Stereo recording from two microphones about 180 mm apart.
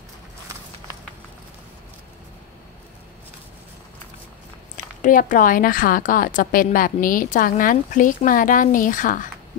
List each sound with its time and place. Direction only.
5.0 s a woman's voice: 45° left (ahead or behind)